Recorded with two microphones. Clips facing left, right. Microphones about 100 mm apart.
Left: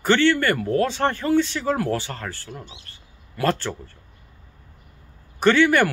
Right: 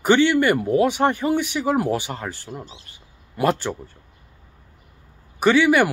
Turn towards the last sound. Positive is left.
turn(degrees=-10)  # may be behind; listen again after turning